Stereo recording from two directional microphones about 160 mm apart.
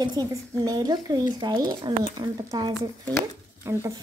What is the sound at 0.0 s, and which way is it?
A woman's voice, 25° right (ahead or behind).